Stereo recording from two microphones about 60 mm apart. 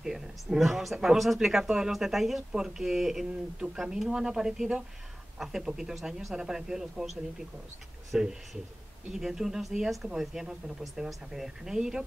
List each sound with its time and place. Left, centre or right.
0.0 s speech: centre
8.1 s speech: centre